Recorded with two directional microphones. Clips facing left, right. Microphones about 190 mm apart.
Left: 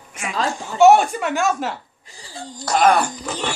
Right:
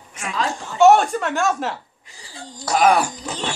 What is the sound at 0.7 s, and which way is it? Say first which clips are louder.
A woman's voice: left 1 dB; 5° left (ahead or behind).